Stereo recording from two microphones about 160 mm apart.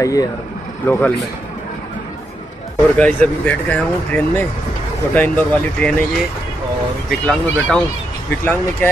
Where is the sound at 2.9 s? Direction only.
10° left (ahead or behind).